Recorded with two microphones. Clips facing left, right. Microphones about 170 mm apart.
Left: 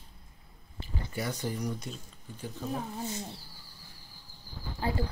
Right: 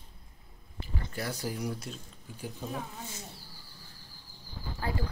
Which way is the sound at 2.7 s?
30° left (ahead or behind).